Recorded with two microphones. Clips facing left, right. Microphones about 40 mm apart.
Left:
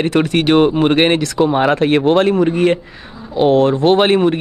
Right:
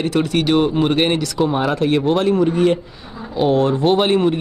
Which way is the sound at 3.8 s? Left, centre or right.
Left.